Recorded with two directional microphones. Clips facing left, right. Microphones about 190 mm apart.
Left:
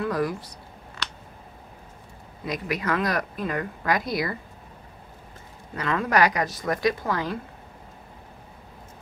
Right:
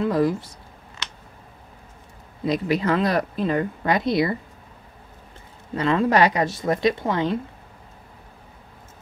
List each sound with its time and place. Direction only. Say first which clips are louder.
0.0 s speech: right 5 dB; 25° right (ahead or behind)
2.4 s speech: right 7 dB; 30° right (ahead or behind)
5.8 s speech: right 4 dB; 25° right (ahead or behind)